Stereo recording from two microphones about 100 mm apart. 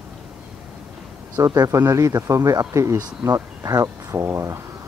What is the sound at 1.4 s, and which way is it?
Speech, 35° right (ahead or behind).